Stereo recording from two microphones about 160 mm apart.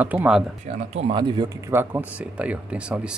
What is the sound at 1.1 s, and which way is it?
Speech, 30° right (ahead or behind).